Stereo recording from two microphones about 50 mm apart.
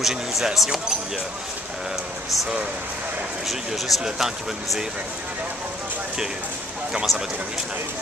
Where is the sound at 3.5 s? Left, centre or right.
Centre.